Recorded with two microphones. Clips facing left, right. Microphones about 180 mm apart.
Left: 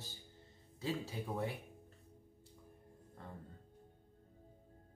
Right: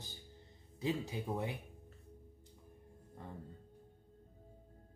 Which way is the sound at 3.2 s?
15° right (ahead or behind).